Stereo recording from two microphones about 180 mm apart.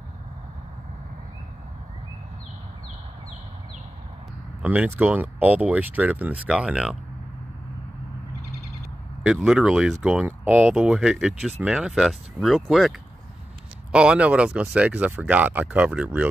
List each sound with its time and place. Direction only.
4.6 s speech: 10° right (ahead or behind)
9.2 s speech: 5° right (ahead or behind)
13.9 s speech: 5° right (ahead or behind)